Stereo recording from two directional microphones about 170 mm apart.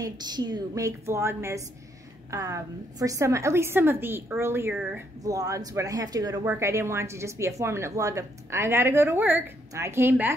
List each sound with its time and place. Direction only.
0.0 s a woman's voice: 25° right (ahead or behind); by 5.0 s 10° right (ahead or behind)
5.2 s a woman's voice: 20° right (ahead or behind)